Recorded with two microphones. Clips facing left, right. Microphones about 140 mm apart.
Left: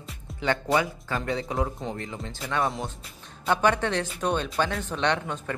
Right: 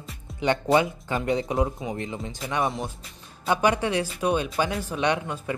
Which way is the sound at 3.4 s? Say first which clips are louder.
Right 1 dB; 10° right (ahead or behind).